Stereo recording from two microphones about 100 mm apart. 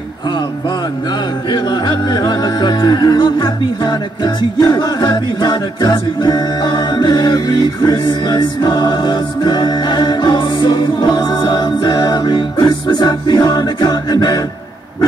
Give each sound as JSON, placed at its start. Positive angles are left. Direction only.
{"t": 1.5, "sound": "music", "side_deg": 45}